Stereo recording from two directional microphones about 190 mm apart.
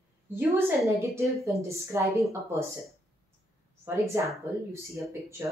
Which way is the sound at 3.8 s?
15° right (ahead or behind).